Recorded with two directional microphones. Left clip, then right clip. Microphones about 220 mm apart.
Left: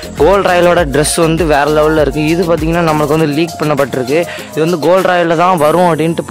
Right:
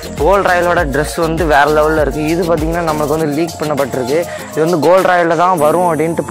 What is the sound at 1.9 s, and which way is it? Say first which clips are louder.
Speech: left 2 dB; 40° left (ahead or behind).